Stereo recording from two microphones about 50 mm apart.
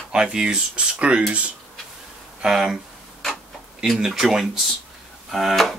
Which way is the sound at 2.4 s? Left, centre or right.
Centre.